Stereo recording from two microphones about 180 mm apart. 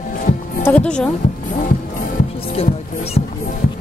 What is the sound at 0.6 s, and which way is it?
Music, 5° left (ahead or behind).